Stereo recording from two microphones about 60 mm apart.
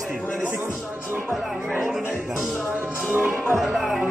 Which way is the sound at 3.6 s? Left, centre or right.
Centre.